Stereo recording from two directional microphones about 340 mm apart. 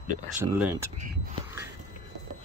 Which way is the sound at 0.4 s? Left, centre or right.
Centre.